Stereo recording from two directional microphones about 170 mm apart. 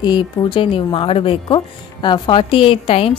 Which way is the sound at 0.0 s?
25° left (ahead or behind).